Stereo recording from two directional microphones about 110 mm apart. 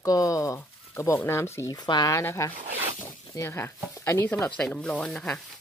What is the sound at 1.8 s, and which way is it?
Speech, 45° left (ahead or behind).